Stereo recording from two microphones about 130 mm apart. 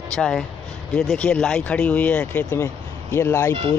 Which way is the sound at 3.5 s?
45° right (ahead or behind).